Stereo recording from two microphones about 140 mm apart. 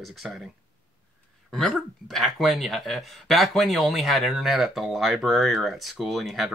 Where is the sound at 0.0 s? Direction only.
Centre (ahead or behind).